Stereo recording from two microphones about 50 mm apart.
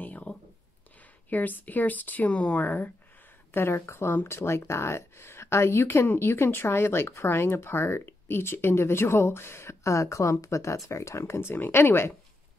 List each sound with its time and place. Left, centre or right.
0.0 s a sound: left
1.3 s speech: left
2.6 s speech: left
3.5 s speech: left
10.9 s speech: left